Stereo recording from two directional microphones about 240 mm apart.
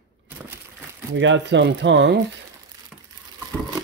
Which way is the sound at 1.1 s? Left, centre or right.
Right.